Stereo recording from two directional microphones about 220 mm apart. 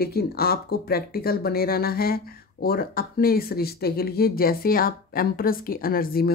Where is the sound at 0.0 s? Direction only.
45° left (ahead or behind).